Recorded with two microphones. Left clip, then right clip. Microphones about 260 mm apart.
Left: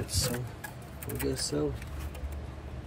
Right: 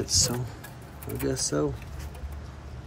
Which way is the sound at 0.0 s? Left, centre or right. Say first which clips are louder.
Right 8 dB; centre.